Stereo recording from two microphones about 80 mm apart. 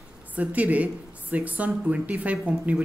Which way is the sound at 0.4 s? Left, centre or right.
Centre.